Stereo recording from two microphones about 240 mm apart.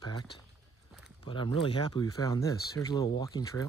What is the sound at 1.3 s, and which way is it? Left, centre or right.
Speech, left.